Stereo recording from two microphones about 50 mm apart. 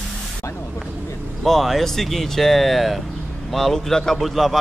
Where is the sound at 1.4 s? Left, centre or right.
Centre.